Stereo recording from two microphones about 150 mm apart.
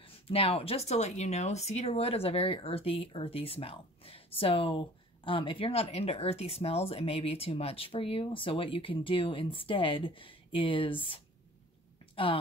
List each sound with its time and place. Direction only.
0.0 s speech: 40° left (ahead or behind)